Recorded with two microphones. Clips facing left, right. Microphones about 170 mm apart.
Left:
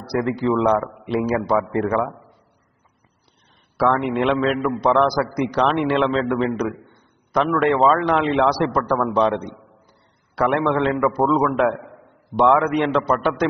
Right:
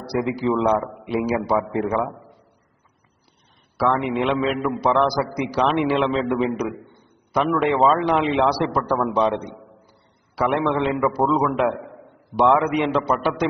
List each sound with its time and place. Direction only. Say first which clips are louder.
0.2 s a man's voice: left 1 dB; 15° right (ahead or behind)
3.9 s a man's voice: left 1 dB; 5° right (ahead or behind)
7.6 s a man's voice: left 2 dB; 5° right (ahead or behind)